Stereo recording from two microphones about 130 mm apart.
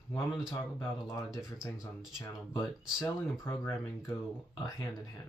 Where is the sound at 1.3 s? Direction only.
5° right (ahead or behind).